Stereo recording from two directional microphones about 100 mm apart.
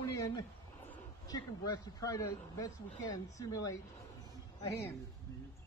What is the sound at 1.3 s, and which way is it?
Speech, 40° left (ahead or behind).